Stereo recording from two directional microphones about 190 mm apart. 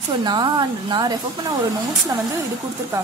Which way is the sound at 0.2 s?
25° right (ahead or behind).